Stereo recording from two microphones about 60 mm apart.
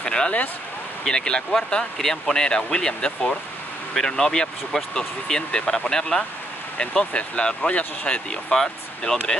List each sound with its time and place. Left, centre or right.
0.0 s speech: centre
8.3 s speech: centre